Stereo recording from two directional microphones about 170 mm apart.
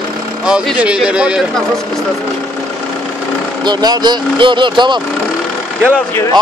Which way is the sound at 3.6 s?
25° right (ahead or behind).